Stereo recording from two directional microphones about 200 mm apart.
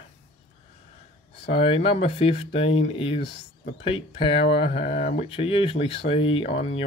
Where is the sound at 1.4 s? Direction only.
25° left (ahead or behind).